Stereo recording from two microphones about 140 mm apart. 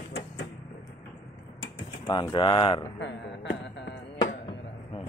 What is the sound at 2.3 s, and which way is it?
Speech, 35° left (ahead or behind).